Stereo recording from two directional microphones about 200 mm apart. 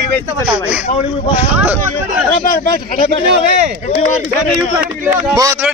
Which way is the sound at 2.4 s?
45° left (ahead or behind).